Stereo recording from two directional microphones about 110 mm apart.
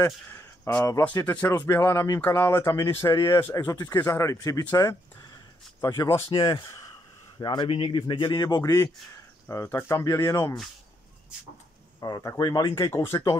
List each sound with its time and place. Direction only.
0.0 s speech: 20° left (ahead or behind)
3.7 s speech: 35° left (ahead or behind)
5.9 s speech: 25° left (ahead or behind)
6.3 s a man's voice: 40° left (ahead or behind)
12.0 s a man's voice: 35° left (ahead or behind)